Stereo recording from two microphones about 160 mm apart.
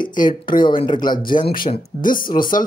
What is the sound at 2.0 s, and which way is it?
Speech, 60° left (ahead or behind).